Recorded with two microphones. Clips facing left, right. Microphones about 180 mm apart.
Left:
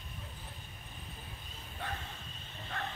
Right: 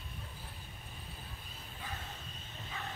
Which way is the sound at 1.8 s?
70° left (ahead or behind).